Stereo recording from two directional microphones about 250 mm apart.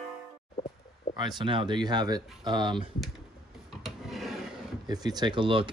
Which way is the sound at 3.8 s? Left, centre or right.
Centre.